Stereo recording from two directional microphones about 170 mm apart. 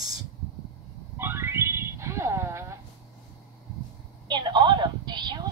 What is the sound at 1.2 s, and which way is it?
Music, 15° right (ahead or behind).